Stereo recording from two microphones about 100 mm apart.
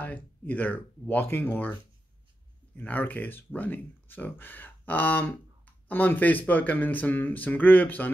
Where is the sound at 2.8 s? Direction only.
15° left (ahead or behind).